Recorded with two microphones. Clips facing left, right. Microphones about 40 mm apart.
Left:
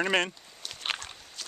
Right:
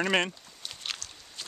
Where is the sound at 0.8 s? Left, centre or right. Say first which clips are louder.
Left 5 dB; left.